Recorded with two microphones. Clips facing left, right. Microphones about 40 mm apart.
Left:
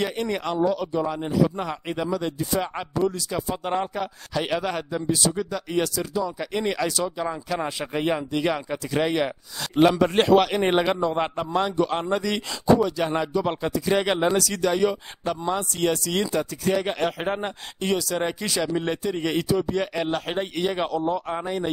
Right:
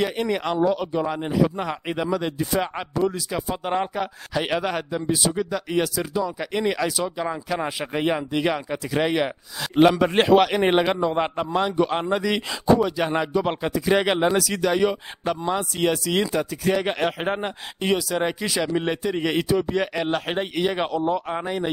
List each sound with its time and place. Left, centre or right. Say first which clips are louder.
0.0 s a man's voice: right 2 dB; centre; by 2.7 s right
2.7 s a man's voice: right 1 dB; centre